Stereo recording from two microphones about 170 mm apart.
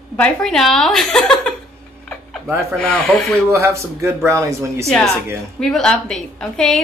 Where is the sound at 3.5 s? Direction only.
15° right (ahead or behind).